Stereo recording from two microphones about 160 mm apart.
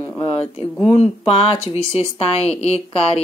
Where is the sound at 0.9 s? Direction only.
35° left (ahead or behind).